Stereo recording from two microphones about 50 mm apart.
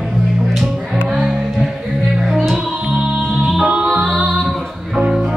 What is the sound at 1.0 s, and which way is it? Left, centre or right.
Music, centre.